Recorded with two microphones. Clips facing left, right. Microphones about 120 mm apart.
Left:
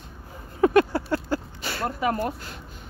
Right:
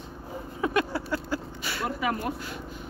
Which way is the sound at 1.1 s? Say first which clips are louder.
Left 4 dB; 30° left (ahead or behind).